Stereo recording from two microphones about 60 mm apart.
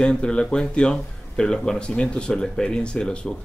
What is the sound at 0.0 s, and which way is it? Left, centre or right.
Speech, centre.